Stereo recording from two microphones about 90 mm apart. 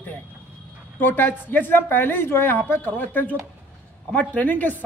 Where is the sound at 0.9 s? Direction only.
20° left (ahead or behind).